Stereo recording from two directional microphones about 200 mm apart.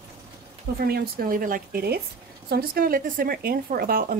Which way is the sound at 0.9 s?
50° right (ahead or behind).